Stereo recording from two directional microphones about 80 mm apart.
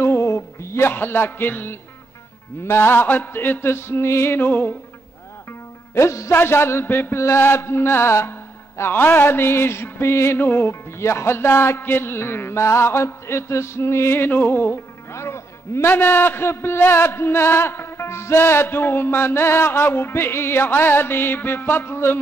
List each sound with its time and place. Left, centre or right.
0.0 s music: left
2.6 s mantra: left
5.9 s a sound: left